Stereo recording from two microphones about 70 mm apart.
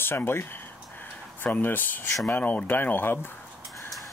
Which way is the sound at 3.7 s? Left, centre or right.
Centre.